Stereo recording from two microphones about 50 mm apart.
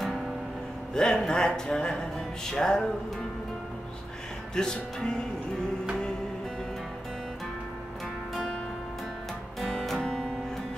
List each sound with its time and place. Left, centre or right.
0.9 s speech: centre
4.6 s speech: centre
9.6 s music: centre
9.9 s music: centre